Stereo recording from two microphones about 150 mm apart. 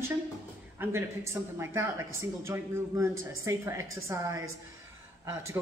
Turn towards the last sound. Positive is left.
turn(degrees=-20)  # may be behind; listen again after turning